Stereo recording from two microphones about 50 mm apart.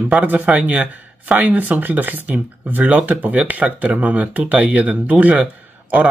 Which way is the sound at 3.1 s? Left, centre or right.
Right.